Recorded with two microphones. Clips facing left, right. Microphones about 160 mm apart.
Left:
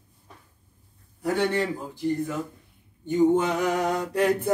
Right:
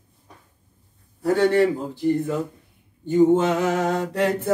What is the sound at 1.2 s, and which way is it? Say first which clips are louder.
Speech: right 6 dB; 15° left (ahead or behind).